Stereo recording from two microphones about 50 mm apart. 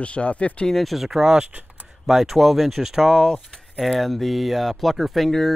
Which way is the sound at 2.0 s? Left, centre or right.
Centre.